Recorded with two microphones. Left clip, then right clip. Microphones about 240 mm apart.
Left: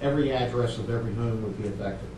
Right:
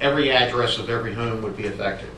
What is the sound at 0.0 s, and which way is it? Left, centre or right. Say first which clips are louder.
A man's voice: right 8 dB; centre.